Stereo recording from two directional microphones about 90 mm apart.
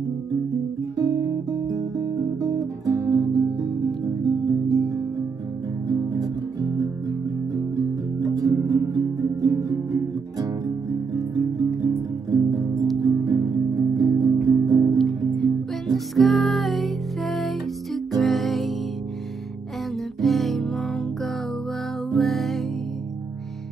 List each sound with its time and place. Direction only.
0.9 s guitar: 40° right (ahead or behind)
4.3 s music: 40° right (ahead or behind)
11.1 s music: 40° right (ahead or behind)
15.0 s music: 5° left (ahead or behind)
20.2 s music: centre (ahead or behind)
22.1 s music: centre (ahead or behind)